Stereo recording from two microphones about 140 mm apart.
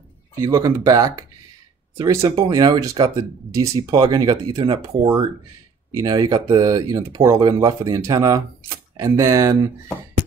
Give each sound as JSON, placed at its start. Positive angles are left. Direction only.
{"t": 0.4, "sound": "speech", "side_deg": -25}